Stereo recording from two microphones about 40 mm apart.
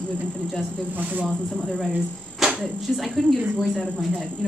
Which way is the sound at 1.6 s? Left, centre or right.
Centre.